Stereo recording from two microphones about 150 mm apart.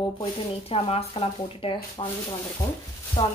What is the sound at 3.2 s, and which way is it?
Speech, 35° left (ahead or behind).